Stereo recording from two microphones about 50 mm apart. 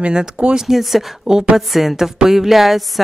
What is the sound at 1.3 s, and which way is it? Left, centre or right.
Speech, centre.